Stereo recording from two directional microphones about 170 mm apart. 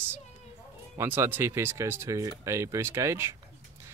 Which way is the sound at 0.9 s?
15° right (ahead or behind).